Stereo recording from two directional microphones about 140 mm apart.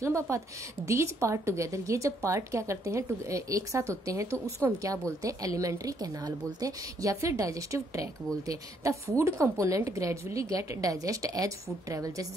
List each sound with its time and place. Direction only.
0.0 s speech: 20° right (ahead or behind)